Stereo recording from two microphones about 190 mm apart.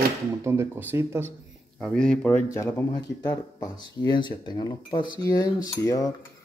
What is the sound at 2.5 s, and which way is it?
Speech, 20° left (ahead or behind).